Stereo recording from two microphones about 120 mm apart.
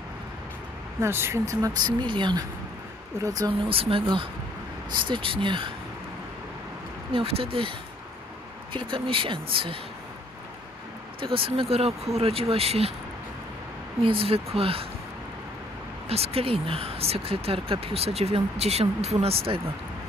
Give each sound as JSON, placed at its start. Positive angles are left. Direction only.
{"t": 1.0, "sound": "speech", "side_deg": -20}
{"t": 3.3, "sound": "speech", "side_deg": -30}
{"t": 3.6, "sound": "speech", "side_deg": -50}
{"t": 7.2, "sound": "speech", "side_deg": -50}
{"t": 8.7, "sound": "speech", "side_deg": -45}
{"t": 11.3, "sound": "speech", "side_deg": -50}
{"t": 14.0, "sound": "speech", "side_deg": -50}
{"t": 16.1, "sound": "speech", "side_deg": -55}